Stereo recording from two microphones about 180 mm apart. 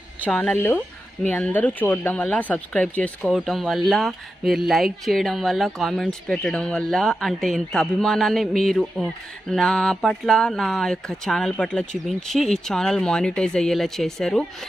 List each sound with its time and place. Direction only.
0.3 s speech: 5° left (ahead or behind)